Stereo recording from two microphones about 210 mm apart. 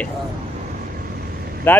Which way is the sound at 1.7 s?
10° left (ahead or behind).